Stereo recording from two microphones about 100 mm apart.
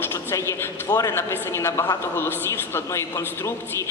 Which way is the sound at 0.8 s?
35° left (ahead or behind).